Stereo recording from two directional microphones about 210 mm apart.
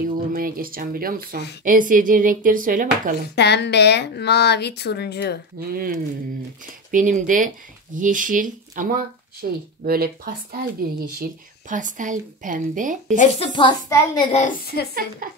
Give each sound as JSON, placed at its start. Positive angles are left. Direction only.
{"t": 0.3, "sound": "speech", "side_deg": -45}
{"t": 3.3, "sound": "a woman's voice", "side_deg": 55}
{"t": 5.6, "sound": "speech", "side_deg": -45}
{"t": 13.2, "sound": "a child's voice", "side_deg": 25}
{"t": 14.3, "sound": "a woman's voice", "side_deg": 40}
{"t": 15.2, "sound": "speech", "side_deg": -40}